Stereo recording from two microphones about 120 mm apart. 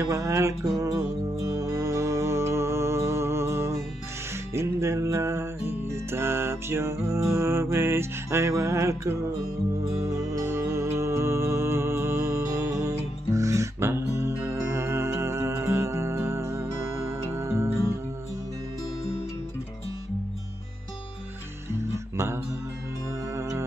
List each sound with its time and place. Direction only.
0.0 s music: 25° right (ahead or behind)
22.1 s music: 20° right (ahead or behind)